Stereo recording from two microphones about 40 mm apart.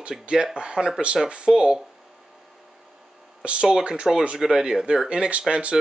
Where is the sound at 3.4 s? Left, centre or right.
Right; by 5.0 s centre.